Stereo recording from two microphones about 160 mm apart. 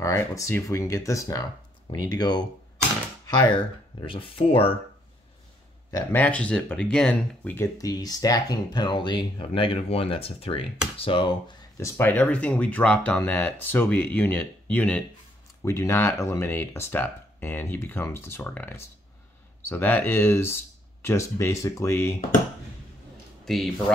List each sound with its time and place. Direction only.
0.0 s speech: 20° left (ahead or behind); by 4.7 s 35° left (ahead or behind)
6.1 s speech: 10° left (ahead or behind); by 11.5 s 30° left (ahead or behind)
11.8 s speech: 10° left (ahead or behind)
23.4 s speech: centre (ahead or behind)